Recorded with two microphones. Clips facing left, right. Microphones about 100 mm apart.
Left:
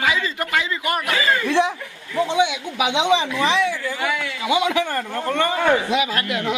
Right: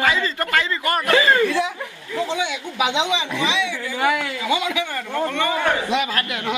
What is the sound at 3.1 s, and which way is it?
Speech, 40° left (ahead or behind).